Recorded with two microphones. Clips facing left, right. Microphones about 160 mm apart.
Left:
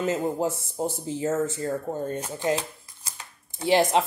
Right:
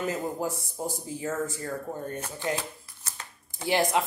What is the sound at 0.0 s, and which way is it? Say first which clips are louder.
Speech: left 5 dB; 25° left (ahead or behind).